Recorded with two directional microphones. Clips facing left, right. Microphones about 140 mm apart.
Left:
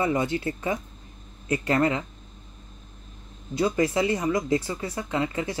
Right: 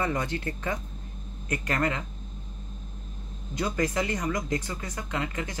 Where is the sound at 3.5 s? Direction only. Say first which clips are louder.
Left 5 dB; 25° left (ahead or behind).